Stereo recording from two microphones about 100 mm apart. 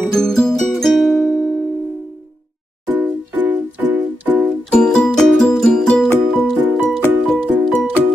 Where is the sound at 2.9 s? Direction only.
20° right (ahead or behind).